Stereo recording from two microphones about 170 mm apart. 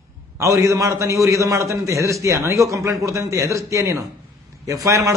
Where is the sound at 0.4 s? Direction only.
20° right (ahead or behind).